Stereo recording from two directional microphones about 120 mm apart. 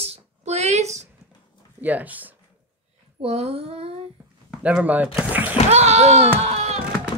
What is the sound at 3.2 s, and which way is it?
Speech, 55° right (ahead or behind).